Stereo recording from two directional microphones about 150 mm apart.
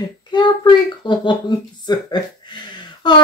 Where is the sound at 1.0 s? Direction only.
30° left (ahead or behind).